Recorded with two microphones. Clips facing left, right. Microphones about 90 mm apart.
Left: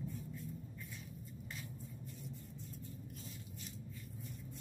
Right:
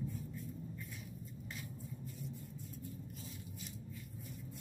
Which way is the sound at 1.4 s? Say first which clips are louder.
Right 1 dB; centre (ahead or behind).